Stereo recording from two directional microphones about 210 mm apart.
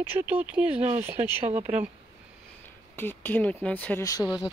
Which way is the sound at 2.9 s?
10° left (ahead or behind).